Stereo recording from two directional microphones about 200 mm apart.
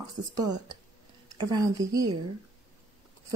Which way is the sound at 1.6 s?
15° right (ahead or behind).